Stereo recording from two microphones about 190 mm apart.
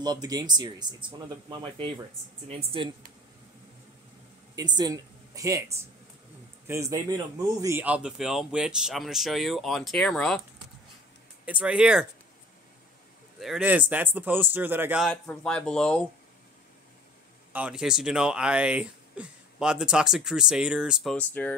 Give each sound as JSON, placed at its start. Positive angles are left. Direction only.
{"t": 0.0, "sound": "speech", "side_deg": -20}
{"t": 4.6, "sound": "a man's voice", "side_deg": -20}
{"t": 11.4, "sound": "speech", "side_deg": -5}
{"t": 13.4, "sound": "a man's voice", "side_deg": -5}
{"t": 15.0, "sound": "speech", "side_deg": 5}
{"t": 17.5, "sound": "speech", "side_deg": -5}